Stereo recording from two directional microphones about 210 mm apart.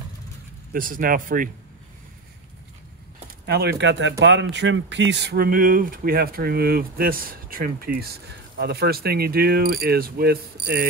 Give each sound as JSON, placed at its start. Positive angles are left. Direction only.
{"t": 0.7, "sound": "speech", "side_deg": -40}
{"t": 3.4, "sound": "speech", "side_deg": -50}